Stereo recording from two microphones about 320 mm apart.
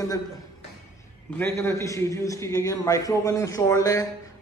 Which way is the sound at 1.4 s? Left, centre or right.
Centre.